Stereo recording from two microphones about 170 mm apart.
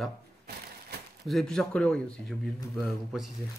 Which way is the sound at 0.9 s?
70° right (ahead or behind).